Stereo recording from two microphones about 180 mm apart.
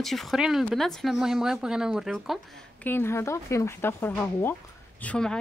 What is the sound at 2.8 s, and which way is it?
Speech, 15° left (ahead or behind).